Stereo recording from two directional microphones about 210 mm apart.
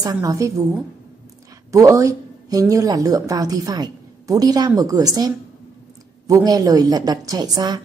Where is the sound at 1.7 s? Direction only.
15° right (ahead or behind).